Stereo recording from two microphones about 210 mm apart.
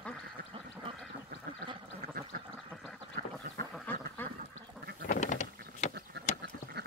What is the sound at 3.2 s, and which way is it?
Duck, 45° right (ahead or behind).